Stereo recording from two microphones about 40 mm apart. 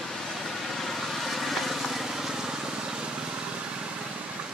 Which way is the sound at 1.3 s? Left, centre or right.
Centre.